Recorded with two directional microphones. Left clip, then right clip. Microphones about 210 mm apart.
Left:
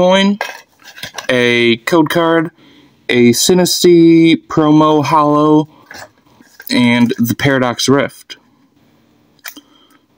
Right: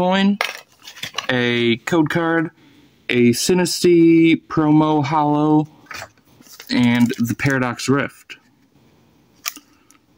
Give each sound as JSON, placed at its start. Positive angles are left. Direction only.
{"t": 0.0, "sound": "speech", "side_deg": -15}
{"t": 6.7, "sound": "speech", "side_deg": -10}